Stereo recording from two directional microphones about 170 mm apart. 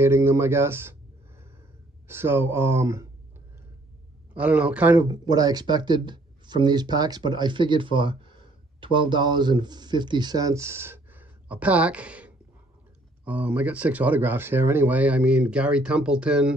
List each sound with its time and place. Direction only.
0.0 s speech: 15° right (ahead or behind)
2.0 s speech: 15° right (ahead or behind)
4.3 s speech: 10° right (ahead or behind)
5.0 s speech: 20° right (ahead or behind); by 16.5 s 5° right (ahead or behind)